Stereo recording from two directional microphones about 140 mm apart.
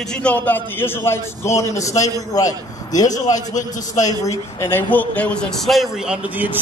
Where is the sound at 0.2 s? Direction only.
10° left (ahead or behind).